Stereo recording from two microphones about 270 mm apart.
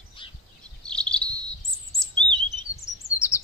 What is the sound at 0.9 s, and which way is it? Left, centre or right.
Bird, centre.